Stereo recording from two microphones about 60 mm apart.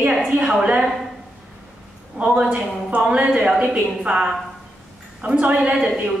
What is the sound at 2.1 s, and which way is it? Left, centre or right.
Speech, centre.